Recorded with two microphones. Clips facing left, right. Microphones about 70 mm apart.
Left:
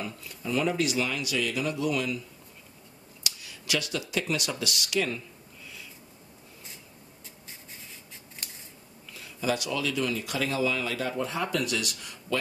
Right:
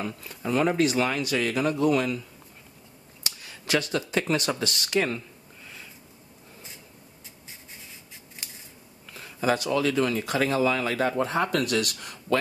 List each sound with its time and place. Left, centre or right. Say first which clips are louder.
0.0 s speech: right 4 dB; right
3.3 s a sound: right 4 dB; right
4.1 s speech: right 4 dB; right
9.1 s speech: right 4 dB; right